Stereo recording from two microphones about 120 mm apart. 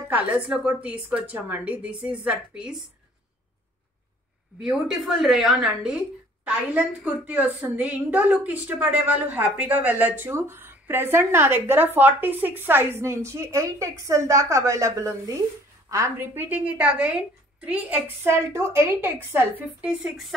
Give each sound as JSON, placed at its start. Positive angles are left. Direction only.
{"t": 0.1, "sound": "a woman's voice", "side_deg": -10}
{"t": 4.6, "sound": "a woman's voice", "side_deg": -5}